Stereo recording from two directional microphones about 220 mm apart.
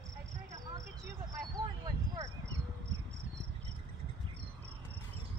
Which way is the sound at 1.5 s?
20° right (ahead or behind).